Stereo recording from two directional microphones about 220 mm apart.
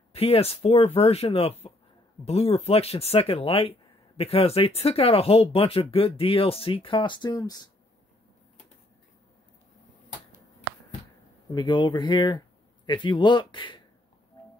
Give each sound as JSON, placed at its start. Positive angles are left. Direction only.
{"t": 0.1, "sound": "speech", "side_deg": 25}
{"t": 11.5, "sound": "speech", "side_deg": 20}
{"t": 14.3, "sound": "music", "side_deg": 20}